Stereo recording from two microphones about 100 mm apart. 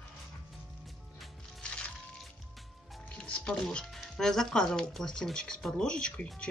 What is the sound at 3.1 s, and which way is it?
Speech, 10° left (ahead or behind).